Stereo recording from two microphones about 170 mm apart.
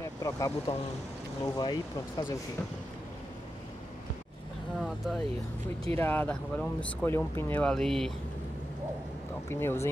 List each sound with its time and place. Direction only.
0.0 s speech: 20° left (ahead or behind)
4.7 s speech: centre (ahead or behind)
5.9 s speech: 10° left (ahead or behind)
9.5 s speech: 15° left (ahead or behind)